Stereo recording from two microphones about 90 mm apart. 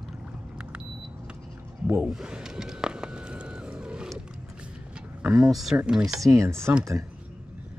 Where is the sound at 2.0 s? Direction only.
10° right (ahead or behind).